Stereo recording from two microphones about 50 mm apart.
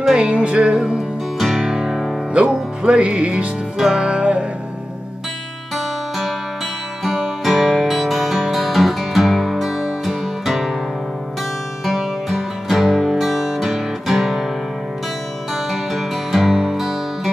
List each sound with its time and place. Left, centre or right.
0.1 s music: right
1.4 s music: centre
2.3 s music: right
7.1 s music: centre
11.8 s music: centre
15.5 s music: centre